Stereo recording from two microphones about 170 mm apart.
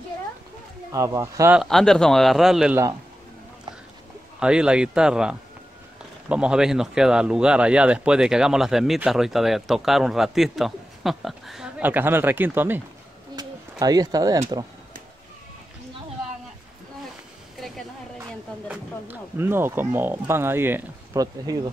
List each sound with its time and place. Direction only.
0.9 s speech: 20° right (ahead or behind)
1.6 s speech: centre (ahead or behind)
4.4 s speech: 5° right (ahead or behind)
13.4 s bird: 20° right (ahead or behind)
18.7 s speech: 10° right (ahead or behind)